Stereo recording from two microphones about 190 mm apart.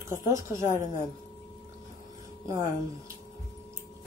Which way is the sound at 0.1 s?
15° right (ahead or behind).